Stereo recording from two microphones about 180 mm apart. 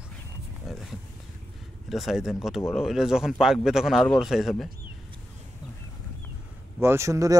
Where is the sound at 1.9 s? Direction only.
Centre (ahead or behind).